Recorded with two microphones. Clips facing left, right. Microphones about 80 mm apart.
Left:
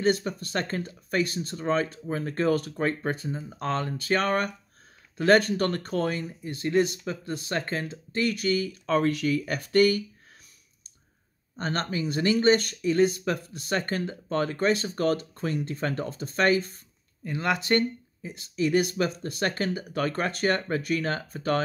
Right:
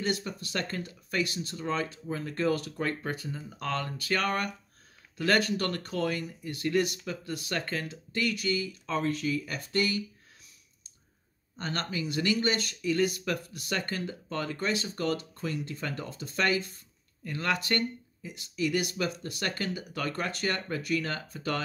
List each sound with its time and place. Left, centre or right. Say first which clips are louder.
0.0 s speech: left 7 dB; left
8.3 s speech: left 5 dB; left
11.5 s speech: left 4 dB; left
12.9 s speech: left 5 dB; left
17.2 s speech: left 3 dB; centre; by 21.5 s left